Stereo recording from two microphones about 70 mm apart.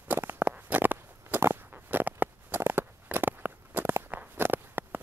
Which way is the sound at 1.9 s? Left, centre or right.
Right.